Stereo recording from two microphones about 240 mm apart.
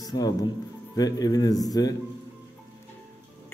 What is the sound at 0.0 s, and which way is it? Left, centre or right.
Music, centre.